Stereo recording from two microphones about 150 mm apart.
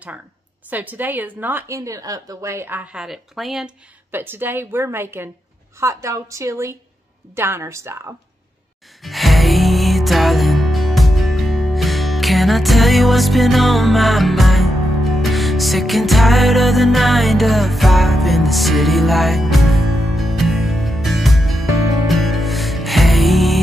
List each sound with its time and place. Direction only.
0.7 s a woman's voice: 10° right (ahead or behind)
4.1 s a woman's voice: 15° right (ahead or behind)
9.0 s music: centre (ahead or behind)